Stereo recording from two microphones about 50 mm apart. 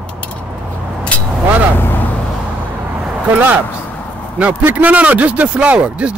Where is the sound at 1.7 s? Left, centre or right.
Left.